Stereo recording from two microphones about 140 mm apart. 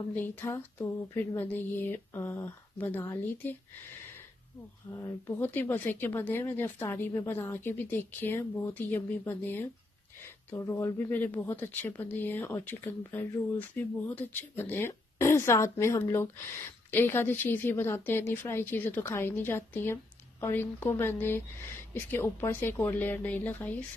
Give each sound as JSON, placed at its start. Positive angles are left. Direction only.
{"t": 0.1, "sound": "speech", "side_deg": 15}
{"t": 4.9, "sound": "speech", "side_deg": 20}